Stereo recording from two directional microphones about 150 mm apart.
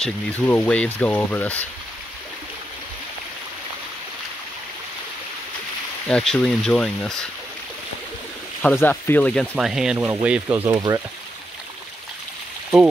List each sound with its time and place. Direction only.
0.0 s speech: 10° left (ahead or behind)
6.0 s speech: 5° left (ahead or behind)
8.6 s speech: 15° left (ahead or behind); by 10.7 s 10° right (ahead or behind)
10.7 s speech: 25° right (ahead or behind)